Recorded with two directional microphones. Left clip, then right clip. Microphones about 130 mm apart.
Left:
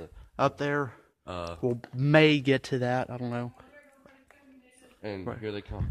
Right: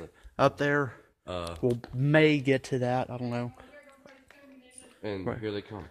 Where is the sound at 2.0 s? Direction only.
40° left (ahead or behind).